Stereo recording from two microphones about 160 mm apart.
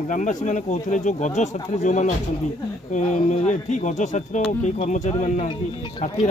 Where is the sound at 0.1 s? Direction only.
50° left (ahead or behind).